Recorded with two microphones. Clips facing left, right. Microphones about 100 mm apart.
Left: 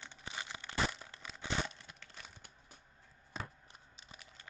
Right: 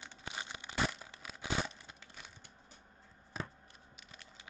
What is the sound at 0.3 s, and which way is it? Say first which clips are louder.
Crumpling: even; 15° right (ahead or behind).